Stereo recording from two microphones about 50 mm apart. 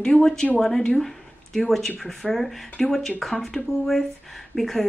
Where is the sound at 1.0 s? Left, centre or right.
Centre.